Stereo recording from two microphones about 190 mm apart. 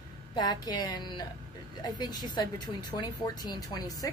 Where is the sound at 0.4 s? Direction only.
20° left (ahead or behind).